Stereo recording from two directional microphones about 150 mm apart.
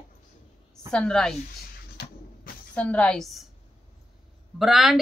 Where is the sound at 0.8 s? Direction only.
5° left (ahead or behind).